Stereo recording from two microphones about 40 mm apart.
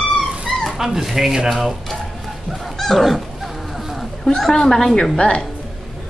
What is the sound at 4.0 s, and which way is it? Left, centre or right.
Speech, centre.